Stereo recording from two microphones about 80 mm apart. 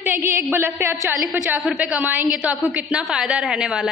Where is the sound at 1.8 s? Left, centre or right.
Centre.